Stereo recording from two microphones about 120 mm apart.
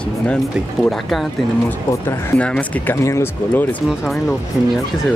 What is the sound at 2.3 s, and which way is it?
Speech, 10° left (ahead or behind).